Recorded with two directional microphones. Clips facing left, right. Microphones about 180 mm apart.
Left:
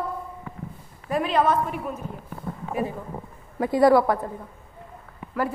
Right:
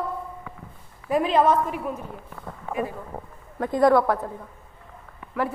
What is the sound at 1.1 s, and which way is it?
Speech, 20° right (ahead or behind).